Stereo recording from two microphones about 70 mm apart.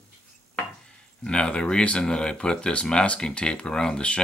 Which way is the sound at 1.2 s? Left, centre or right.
Centre.